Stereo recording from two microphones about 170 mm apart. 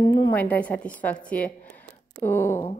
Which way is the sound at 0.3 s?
10° left (ahead or behind).